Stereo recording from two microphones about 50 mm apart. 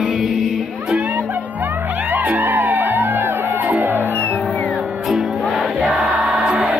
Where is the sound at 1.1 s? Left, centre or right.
Right.